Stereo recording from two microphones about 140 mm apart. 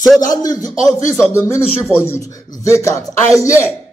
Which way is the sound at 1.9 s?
15° left (ahead or behind).